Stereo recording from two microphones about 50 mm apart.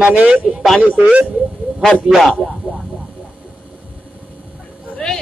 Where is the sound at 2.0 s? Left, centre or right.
Centre.